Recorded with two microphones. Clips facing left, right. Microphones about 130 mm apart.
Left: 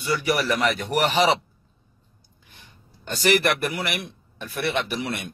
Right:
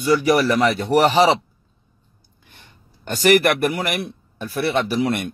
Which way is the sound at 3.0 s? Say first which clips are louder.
Right 5 dB; 50° right (ahead or behind).